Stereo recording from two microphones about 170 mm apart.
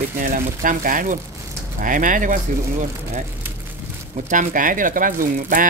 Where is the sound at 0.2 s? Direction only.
50° right (ahead or behind).